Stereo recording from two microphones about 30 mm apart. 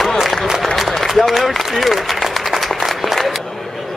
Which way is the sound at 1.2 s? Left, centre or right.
Centre.